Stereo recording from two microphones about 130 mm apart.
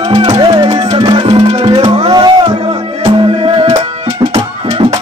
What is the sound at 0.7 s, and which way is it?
Music, 45° right (ahead or behind).